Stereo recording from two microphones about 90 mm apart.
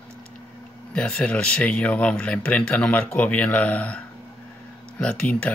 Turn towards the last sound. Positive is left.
turn(degrees=15)  # may be behind; listen again after turning